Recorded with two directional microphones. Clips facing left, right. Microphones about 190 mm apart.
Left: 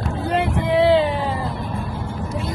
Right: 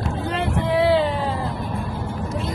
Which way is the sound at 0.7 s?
25° left (ahead or behind).